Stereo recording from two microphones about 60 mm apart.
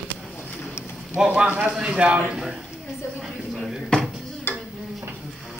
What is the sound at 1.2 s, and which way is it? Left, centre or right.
Speech, centre.